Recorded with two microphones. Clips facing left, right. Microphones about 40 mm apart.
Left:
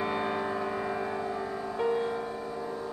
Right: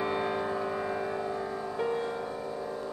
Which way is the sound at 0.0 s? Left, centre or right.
Centre.